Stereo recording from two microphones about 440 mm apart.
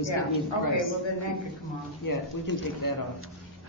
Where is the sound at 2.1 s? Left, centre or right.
Left.